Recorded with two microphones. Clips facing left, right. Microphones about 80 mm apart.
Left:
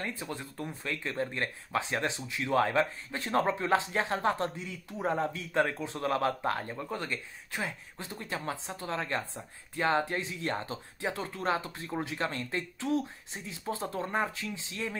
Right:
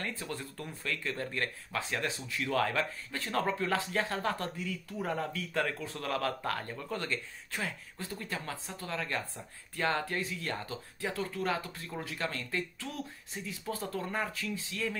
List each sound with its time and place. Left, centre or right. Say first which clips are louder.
0.0 s speech: left 1 dB; centre
6.6 s speech: left 1 dB; centre